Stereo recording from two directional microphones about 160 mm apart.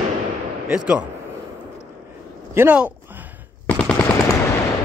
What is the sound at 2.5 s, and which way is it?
Speech, 10° right (ahead or behind).